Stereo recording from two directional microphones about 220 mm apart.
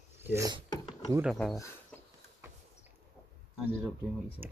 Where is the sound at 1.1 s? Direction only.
Centre (ahead or behind).